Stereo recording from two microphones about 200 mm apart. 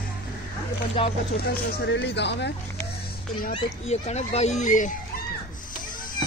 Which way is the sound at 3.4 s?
35° left (ahead or behind).